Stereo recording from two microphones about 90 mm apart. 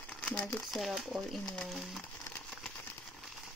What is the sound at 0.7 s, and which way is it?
Speech, centre (ahead or behind).